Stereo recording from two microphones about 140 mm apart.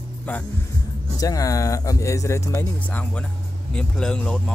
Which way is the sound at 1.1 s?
25° left (ahead or behind).